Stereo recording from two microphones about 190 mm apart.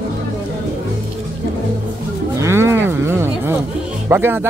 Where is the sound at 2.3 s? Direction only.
15° right (ahead or behind).